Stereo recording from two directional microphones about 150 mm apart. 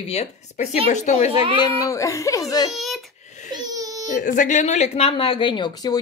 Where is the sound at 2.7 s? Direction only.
Centre (ahead or behind).